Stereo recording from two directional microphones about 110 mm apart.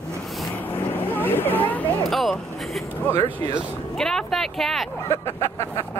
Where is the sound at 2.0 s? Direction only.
Centre (ahead or behind).